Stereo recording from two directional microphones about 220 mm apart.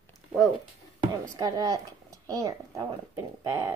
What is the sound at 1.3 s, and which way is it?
A woman's voice, 15° right (ahead or behind).